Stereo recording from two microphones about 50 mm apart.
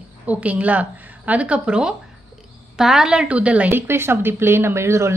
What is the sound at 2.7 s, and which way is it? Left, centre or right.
Speech, centre.